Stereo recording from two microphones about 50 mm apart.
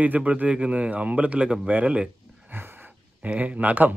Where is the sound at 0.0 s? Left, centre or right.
Right.